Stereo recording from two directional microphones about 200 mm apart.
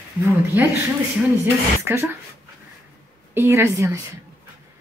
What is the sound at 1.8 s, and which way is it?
Speech, 15° right (ahead or behind).